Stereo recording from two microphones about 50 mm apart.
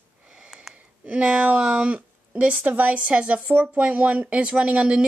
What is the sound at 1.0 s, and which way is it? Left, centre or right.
Speech, right.